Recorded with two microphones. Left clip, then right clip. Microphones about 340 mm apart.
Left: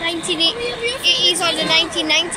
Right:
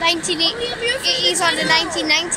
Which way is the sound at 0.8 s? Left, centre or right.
Right.